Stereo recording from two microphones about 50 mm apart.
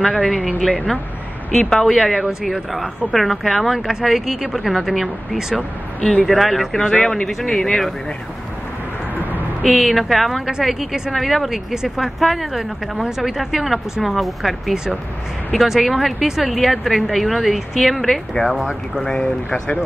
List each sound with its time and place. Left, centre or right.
0.0 s speech: centre
1.5 s speech: centre
6.8 s speech: centre
9.1 s vehicle: right
9.7 s speech: centre
18.9 s speech: centre